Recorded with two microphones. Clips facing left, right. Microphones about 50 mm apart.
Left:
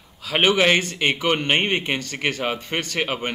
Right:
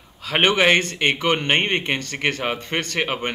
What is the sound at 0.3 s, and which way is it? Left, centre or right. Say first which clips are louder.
Speech: right 1 dB; centre.